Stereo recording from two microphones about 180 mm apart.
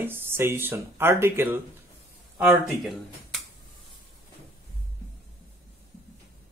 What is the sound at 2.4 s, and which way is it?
Speech, centre (ahead or behind).